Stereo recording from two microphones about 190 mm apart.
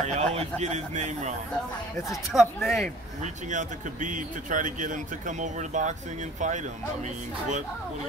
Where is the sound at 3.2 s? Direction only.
40° right (ahead or behind).